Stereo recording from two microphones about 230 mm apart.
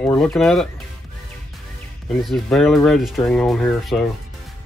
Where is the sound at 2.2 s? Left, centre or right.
Centre.